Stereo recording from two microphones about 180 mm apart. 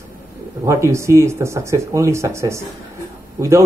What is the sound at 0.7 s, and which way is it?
A man's voice, 15° right (ahead or behind).